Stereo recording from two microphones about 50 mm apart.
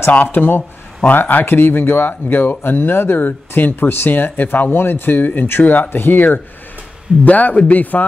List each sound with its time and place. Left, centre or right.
0.1 s speech: left